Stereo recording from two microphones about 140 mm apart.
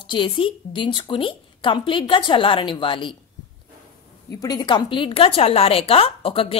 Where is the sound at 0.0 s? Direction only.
35° left (ahead or behind).